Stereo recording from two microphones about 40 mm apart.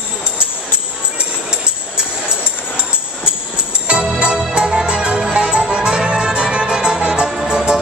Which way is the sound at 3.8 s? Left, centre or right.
Centre.